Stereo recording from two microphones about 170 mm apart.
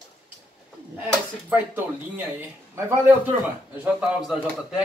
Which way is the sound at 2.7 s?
10° right (ahead or behind).